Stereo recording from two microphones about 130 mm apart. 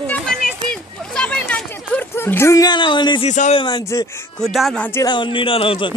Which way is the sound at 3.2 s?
70° left (ahead or behind).